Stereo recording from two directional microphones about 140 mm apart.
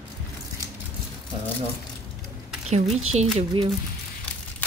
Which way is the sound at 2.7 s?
50° right (ahead or behind).